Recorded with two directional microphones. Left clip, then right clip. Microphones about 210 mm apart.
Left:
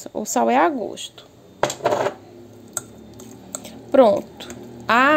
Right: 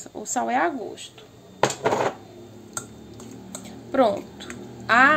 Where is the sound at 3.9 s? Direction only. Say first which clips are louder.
Left 7 dB; 30° left (ahead or behind).